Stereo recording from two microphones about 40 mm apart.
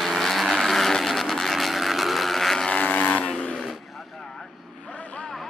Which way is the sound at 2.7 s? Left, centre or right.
Left.